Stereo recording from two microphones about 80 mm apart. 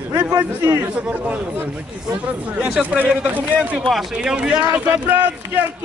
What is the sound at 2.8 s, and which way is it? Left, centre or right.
A man's voice, centre.